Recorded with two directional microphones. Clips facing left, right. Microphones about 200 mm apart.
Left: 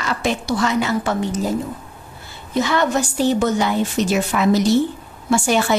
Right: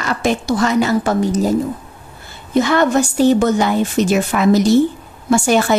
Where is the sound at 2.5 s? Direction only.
55° right (ahead or behind).